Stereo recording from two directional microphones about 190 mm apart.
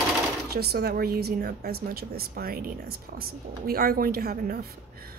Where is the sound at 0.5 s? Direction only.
55° right (ahead or behind).